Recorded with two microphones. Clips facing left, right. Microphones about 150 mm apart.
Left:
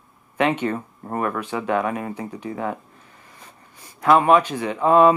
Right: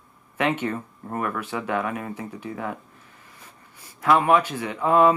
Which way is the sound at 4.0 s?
30° left (ahead or behind).